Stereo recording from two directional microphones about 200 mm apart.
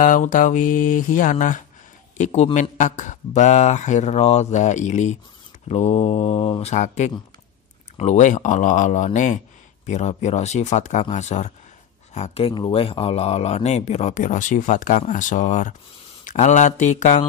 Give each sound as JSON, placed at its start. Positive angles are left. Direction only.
{"t": 0.0, "sound": "speech", "side_deg": 40}